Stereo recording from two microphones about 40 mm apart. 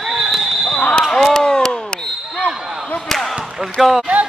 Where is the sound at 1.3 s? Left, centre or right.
Centre.